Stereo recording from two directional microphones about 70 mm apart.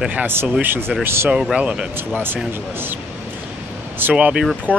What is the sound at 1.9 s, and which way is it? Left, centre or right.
Speech, right.